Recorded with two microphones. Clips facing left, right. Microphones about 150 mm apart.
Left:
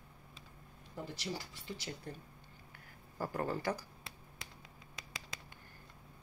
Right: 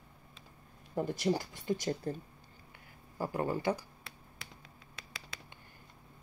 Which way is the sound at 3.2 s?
15° right (ahead or behind).